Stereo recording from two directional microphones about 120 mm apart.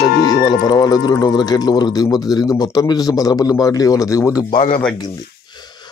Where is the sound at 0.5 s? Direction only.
35° left (ahead or behind).